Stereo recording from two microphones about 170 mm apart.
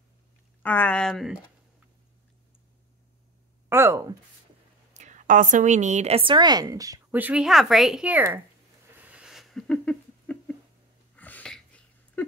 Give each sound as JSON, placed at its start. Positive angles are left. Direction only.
{"t": 0.6, "sound": "speech", "side_deg": 10}
{"t": 3.6, "sound": "speech", "side_deg": -15}
{"t": 4.9, "sound": "a woman's voice", "side_deg": -45}
{"t": 8.9, "sound": "a sound", "side_deg": -10}